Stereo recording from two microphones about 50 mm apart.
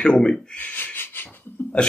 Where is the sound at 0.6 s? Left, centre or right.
Left.